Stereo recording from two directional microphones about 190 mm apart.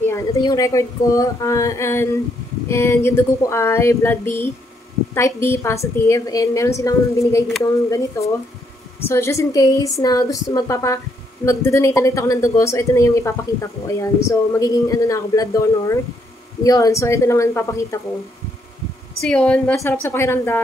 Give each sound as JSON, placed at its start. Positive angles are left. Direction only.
{"t": 0.0, "sound": "speech", "side_deg": 15}
{"t": 19.2, "sound": "speech", "side_deg": 5}